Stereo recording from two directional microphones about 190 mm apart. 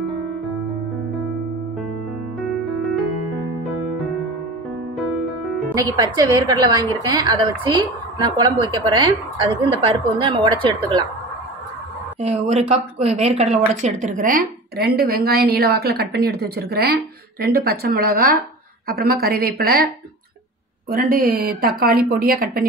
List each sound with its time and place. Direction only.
2.4 s music: centre (ahead or behind)
5.8 s a woman's voice: 20° right (ahead or behind)
12.2 s a woman's voice: 35° right (ahead or behind); by 19.9 s 55° right (ahead or behind)
20.9 s a woman's voice: 50° right (ahead or behind)